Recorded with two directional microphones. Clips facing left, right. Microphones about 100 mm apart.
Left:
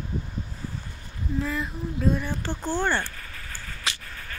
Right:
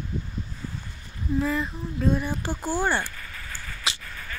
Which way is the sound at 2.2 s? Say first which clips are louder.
Right 1 dB; 15° right (ahead or behind).